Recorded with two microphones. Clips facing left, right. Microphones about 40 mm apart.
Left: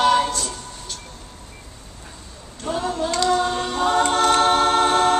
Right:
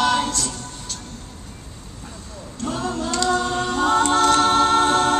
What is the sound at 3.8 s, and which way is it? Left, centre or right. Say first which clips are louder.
A capella: right 1 dB; left.